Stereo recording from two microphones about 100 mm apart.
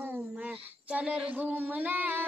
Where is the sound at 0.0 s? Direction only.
15° right (ahead or behind).